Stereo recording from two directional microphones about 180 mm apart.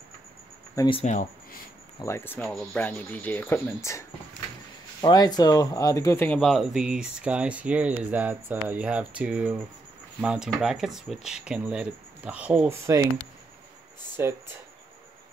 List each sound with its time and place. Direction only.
0.7 s speech: 25° left (ahead or behind)
2.0 s speech: 15° left (ahead or behind)
5.0 s speech: 25° left (ahead or behind); by 13.1 s 15° right (ahead or behind)